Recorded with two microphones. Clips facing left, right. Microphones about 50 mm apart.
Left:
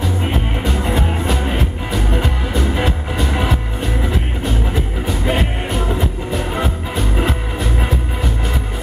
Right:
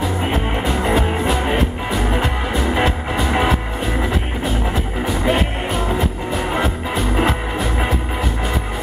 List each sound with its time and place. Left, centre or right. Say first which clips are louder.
0.7 s music: right 2 dB; centre
5.0 s music: right 2 dB; centre